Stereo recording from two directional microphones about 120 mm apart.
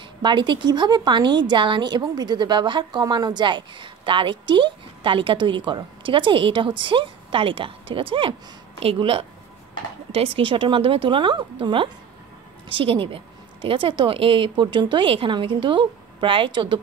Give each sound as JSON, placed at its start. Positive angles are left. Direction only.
{"t": 0.2, "sound": "a woman's voice", "side_deg": -40}